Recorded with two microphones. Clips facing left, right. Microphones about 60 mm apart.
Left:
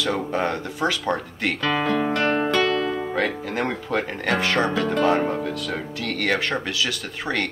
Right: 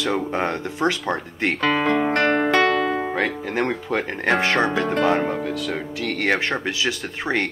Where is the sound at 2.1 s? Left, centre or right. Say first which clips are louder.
Right 3 dB; right.